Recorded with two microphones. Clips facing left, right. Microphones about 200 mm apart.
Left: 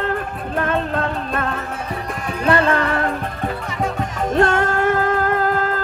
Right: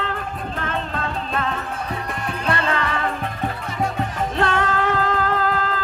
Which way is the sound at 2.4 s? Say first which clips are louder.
Left 7 dB; 55° left (ahead or behind).